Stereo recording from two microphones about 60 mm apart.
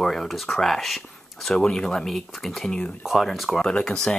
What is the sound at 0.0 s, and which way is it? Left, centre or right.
Speech, centre.